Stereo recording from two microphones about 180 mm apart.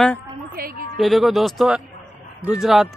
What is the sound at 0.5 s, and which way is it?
Speech, 55° right (ahead or behind).